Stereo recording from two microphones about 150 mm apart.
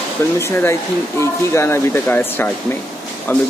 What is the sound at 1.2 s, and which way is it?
Speech, 20° left (ahead or behind).